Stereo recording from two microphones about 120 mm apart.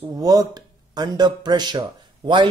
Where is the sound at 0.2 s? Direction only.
30° right (ahead or behind).